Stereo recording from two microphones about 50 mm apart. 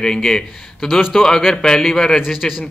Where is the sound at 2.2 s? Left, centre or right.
Centre.